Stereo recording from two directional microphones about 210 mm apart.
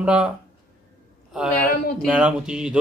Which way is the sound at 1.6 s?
45° left (ahead or behind).